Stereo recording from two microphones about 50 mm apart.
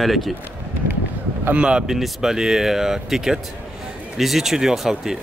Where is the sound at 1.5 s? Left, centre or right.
Right.